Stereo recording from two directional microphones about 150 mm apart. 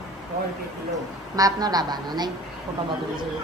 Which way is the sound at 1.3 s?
25° right (ahead or behind).